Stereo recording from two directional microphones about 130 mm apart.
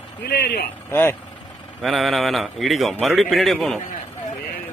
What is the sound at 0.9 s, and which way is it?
Speech, 20° left (ahead or behind).